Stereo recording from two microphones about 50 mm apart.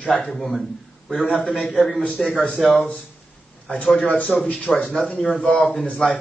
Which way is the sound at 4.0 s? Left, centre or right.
Left.